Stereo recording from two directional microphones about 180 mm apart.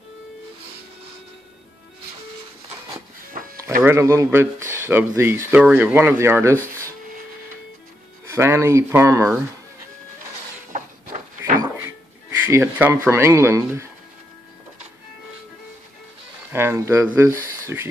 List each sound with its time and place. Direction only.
3.8 s speech: 15° right (ahead or behind)
8.3 s speech: 15° right (ahead or behind)
10.7 s a sound: 45° right (ahead or behind)
12.3 s speech: 15° right (ahead or behind)
16.5 s speech: 15° right (ahead or behind)